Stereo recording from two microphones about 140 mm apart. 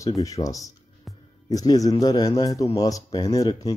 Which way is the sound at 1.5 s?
25° left (ahead or behind).